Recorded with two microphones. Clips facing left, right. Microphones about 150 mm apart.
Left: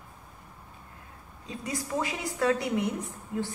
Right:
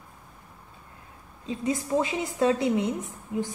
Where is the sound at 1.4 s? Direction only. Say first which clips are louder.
Right 7 dB; 20° right (ahead or behind).